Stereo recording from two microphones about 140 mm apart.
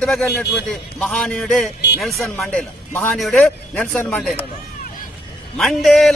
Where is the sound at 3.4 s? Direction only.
10° left (ahead or behind).